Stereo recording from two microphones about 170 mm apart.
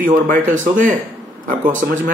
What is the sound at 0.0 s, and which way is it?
Speech, 50° right (ahead or behind).